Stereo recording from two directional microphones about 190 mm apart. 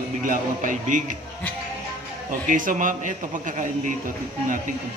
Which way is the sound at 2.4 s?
45° right (ahead or behind).